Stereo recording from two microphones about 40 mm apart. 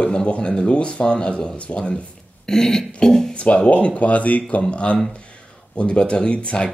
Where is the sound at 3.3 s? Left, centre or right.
Left.